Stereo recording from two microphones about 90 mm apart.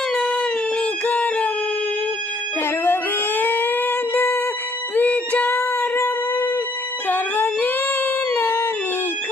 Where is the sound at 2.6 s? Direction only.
25° left (ahead or behind).